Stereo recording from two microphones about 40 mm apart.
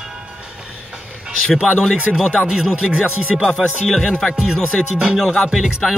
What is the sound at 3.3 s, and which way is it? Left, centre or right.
Speech, centre.